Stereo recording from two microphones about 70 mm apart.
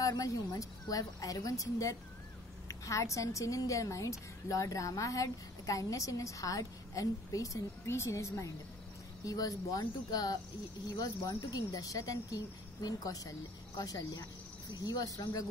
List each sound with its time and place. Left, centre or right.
0.0 s a woman's voice: left
9.2 s a woman's voice: left
11.2 s a woman's voice: left